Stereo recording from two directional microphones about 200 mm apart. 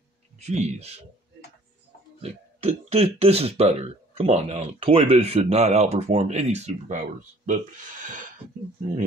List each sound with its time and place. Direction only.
0.4 s speech: 35° right (ahead or behind)
2.2 s speech: 30° right (ahead or behind)